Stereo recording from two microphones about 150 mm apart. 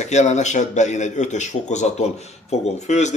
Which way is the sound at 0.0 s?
50° left (ahead or behind).